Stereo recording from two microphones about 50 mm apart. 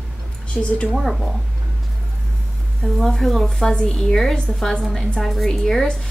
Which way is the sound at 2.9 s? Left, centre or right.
Centre.